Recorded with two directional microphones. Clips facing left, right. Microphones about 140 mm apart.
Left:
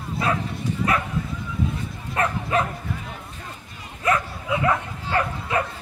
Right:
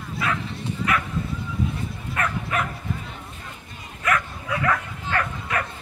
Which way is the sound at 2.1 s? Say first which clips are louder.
Left 4 dB; 30° left (ahead or behind).